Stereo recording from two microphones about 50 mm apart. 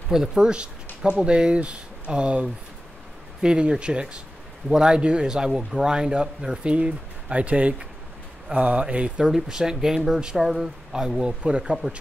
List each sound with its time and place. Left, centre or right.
0.1 s a man's voice: centre